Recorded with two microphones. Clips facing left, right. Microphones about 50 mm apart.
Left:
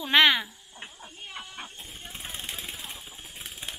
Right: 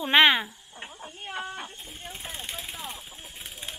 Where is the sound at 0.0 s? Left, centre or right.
Right.